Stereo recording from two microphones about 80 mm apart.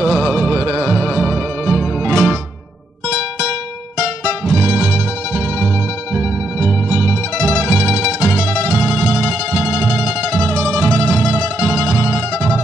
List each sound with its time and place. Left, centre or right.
0.2 s music: left
1.7 s music: right
6.6 s music: right
7.7 s music: left
8.7 s music: right
9.8 s music: left
11.2 s mandolin: right